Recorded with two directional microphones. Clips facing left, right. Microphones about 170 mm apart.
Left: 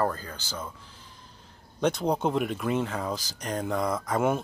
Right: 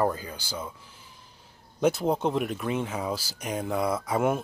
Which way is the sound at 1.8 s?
5° right (ahead or behind).